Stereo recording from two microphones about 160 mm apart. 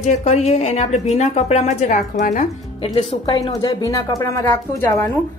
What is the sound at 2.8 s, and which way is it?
Speech, 35° left (ahead or behind).